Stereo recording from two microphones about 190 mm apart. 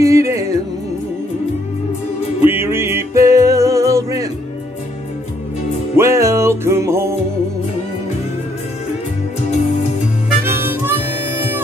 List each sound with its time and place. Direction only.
0.0 s music: 15° right (ahead or behind)
2.4 s music: 10° right (ahead or behind)
5.9 s music: 15° right (ahead or behind)
10.4 s harmonica: 10° right (ahead or behind)